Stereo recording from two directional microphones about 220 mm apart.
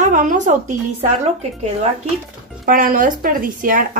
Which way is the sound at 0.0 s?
35° right (ahead or behind).